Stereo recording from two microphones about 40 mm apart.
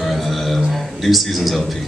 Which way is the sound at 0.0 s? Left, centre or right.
Centre.